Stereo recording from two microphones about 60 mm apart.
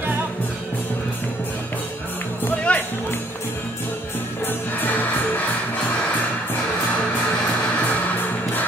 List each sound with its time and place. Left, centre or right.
2.7 s music: left
4.5 s music: left